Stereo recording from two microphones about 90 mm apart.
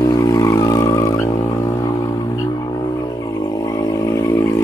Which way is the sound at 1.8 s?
40° left (ahead or behind).